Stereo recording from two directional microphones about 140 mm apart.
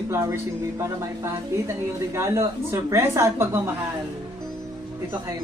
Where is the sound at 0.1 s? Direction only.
20° right (ahead or behind).